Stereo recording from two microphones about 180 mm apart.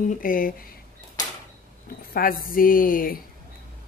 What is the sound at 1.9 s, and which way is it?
Speech, 55° left (ahead or behind).